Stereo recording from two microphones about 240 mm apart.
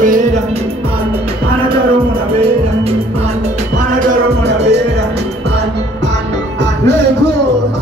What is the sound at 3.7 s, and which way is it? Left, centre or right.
Music, right.